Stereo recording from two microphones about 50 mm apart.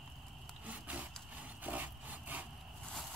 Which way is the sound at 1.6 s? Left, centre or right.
Right.